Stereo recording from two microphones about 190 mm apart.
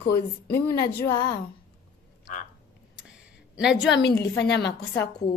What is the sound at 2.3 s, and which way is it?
Speech, 40° left (ahead or behind).